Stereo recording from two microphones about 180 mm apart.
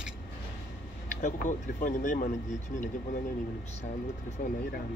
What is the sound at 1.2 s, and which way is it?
Speech, 45° left (ahead or behind).